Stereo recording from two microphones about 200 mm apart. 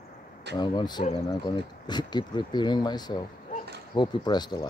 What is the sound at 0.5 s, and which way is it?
Speech, 20° left (ahead or behind).